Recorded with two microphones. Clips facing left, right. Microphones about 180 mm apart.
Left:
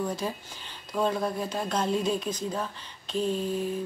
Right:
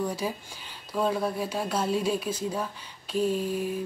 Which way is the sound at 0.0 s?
10° right (ahead or behind).